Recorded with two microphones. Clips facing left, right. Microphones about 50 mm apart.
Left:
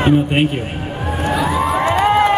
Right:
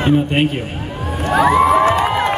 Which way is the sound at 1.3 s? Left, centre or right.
Right.